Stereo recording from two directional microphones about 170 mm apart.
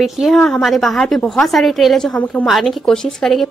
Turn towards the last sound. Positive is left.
turn(degrees=0)  # may be behind; listen again after turning